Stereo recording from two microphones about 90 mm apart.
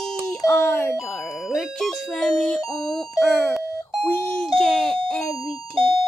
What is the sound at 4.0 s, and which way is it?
Doorbell, 20° left (ahead or behind).